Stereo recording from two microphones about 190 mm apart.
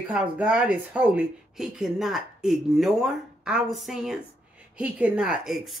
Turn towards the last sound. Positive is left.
turn(degrees=0)  # may be behind; listen again after turning